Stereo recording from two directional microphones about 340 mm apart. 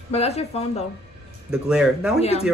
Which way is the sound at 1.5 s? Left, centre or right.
Centre.